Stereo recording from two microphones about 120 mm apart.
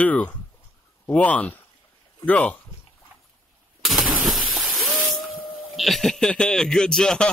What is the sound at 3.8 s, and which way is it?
Shatter, centre (ahead or behind).